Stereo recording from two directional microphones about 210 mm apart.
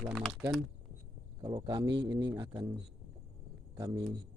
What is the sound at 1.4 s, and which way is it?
A man's voice, 20° right (ahead or behind).